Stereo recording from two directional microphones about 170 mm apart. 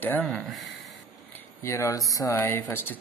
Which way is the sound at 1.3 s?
15° left (ahead or behind).